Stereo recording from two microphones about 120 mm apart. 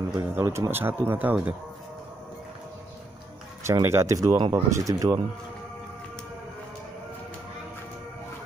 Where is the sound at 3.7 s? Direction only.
20° right (ahead or behind).